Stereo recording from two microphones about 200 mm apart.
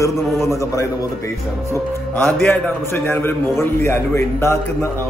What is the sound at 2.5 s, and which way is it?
A man's voice, 10° left (ahead or behind).